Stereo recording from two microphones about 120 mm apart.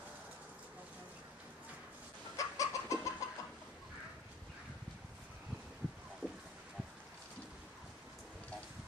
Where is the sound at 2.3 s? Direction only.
25° left (ahead or behind).